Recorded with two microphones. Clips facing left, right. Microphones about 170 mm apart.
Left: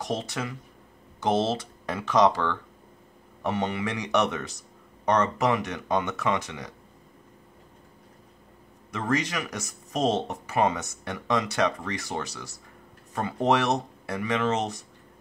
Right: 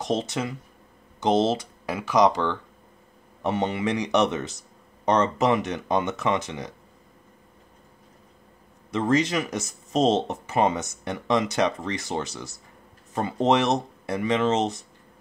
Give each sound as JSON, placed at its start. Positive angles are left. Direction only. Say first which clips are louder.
{"t": 0.0, "sound": "speech", "louder": "right 4 dB", "side_deg": -20}
{"t": 8.9, "sound": "speech", "louder": "right 5 dB", "side_deg": -25}